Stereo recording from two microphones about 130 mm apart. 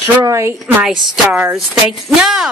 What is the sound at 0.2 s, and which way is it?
Speech, 20° right (ahead or behind).